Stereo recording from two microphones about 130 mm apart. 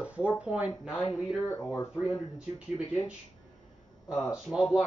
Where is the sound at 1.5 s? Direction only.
20° left (ahead or behind).